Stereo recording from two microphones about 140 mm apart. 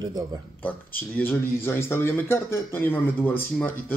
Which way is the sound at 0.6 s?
10° left (ahead or behind).